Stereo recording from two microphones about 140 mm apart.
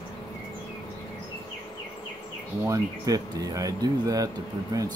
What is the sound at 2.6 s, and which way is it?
Speech, 25° right (ahead or behind).